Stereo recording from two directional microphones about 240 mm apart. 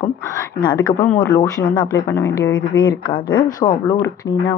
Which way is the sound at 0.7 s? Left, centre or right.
Centre.